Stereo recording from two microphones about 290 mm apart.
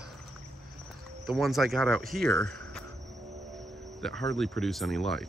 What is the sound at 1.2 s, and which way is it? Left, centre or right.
Speech, centre.